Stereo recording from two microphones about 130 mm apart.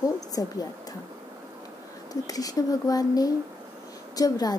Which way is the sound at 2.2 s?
30° left (ahead or behind).